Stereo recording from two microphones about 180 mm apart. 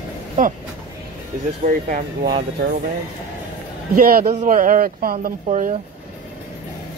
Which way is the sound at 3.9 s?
50° right (ahead or behind).